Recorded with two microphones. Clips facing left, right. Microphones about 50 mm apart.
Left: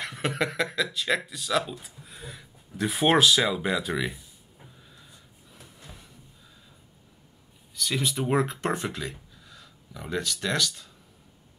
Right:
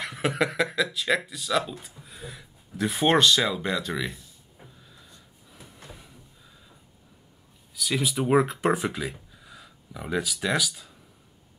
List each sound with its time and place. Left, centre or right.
0.0 s speech: centre
4.8 s a sound: centre
7.7 s speech: centre